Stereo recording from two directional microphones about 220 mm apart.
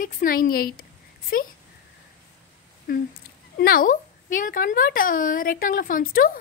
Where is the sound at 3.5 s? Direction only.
40° left (ahead or behind).